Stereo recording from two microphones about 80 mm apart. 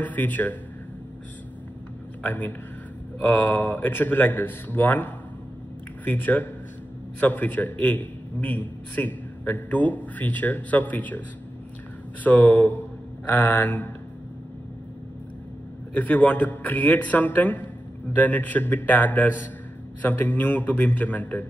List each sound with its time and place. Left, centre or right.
0.0 s a man's voice: left
2.2 s a man's voice: left
15.9 s a man's voice: centre